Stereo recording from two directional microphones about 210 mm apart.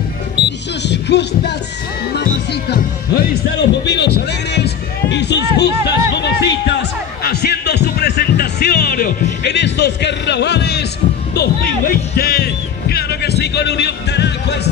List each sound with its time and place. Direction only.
0.8 s music: 55° left (ahead or behind)
2.1 s speech: 50° left (ahead or behind)
3.5 s music: 55° left (ahead or behind)
5.1 s speech: 55° left (ahead or behind)
7.2 s music: 50° left (ahead or behind)